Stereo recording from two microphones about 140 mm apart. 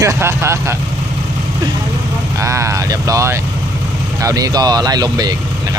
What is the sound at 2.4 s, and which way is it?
Speech, 20° right (ahead or behind).